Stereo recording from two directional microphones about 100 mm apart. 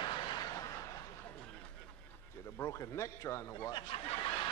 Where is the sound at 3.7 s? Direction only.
65° left (ahead or behind).